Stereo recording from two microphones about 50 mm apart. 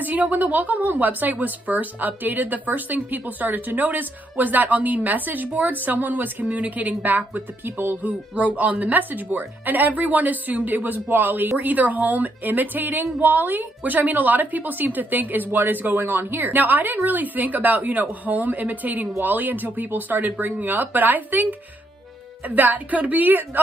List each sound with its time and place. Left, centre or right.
0.0 s a woman's voice: right
8.5 s a woman's voice: right